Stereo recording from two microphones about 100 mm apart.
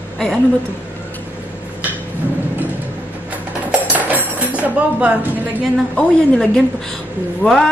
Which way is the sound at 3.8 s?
15° right (ahead or behind).